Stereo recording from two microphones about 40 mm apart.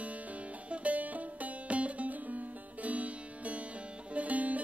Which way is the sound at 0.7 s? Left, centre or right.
Right.